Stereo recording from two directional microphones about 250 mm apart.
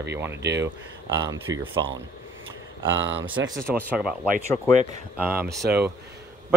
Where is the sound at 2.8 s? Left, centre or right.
Right.